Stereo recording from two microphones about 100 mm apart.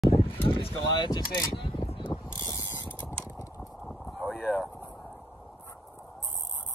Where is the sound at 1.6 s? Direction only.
55° left (ahead or behind).